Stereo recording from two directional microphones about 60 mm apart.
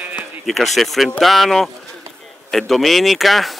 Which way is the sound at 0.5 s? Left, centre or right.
Centre.